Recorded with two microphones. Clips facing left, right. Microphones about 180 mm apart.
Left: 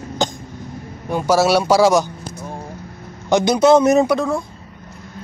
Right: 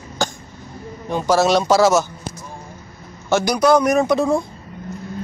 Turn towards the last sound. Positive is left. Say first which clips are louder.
# left 3 dB
turn(degrees=25)  # may be behind; listen again after turning